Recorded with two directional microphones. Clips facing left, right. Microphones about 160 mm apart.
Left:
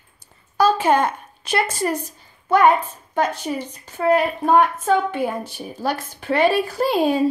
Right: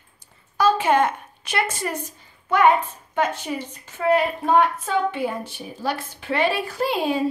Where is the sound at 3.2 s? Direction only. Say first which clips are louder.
Left 2 dB; 35° left (ahead or behind).